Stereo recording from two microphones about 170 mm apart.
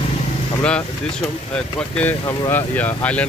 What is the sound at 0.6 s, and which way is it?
Speech, 5° left (ahead or behind).